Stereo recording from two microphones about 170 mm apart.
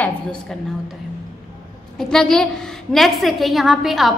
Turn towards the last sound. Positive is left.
turn(degrees=0)  # may be behind; listen again after turning